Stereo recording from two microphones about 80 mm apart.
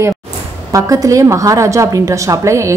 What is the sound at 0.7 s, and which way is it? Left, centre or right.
A woman's voice, right.